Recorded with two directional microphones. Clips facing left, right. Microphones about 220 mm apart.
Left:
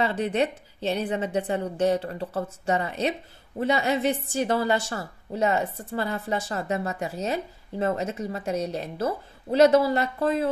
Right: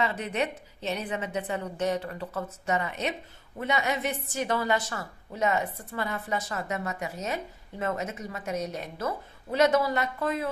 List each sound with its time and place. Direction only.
0.0 s a woman's voice: 30° left (ahead or behind)